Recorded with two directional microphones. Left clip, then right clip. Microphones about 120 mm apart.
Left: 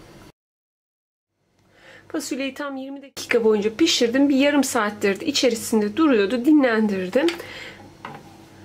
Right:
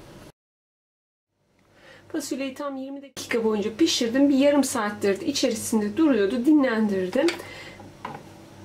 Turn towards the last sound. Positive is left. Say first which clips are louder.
# left 3 dB
turn(degrees=40)  # may be behind; listen again after turning